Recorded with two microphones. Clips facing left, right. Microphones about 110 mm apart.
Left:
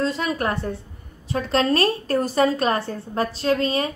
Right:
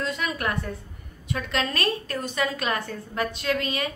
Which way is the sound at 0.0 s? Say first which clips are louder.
Left 5 dB; 30° left (ahead or behind).